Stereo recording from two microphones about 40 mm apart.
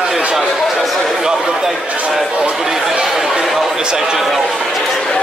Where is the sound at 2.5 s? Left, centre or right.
Centre.